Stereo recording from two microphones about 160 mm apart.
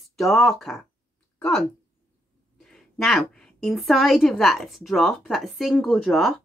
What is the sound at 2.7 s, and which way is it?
A woman's voice, centre (ahead or behind).